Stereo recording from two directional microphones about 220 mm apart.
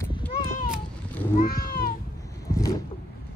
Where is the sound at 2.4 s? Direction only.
15° left (ahead or behind).